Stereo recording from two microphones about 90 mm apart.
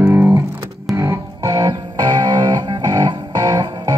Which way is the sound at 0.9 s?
40° right (ahead or behind).